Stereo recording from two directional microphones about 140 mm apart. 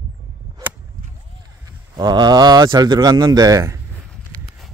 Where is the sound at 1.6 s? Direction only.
30° right (ahead or behind).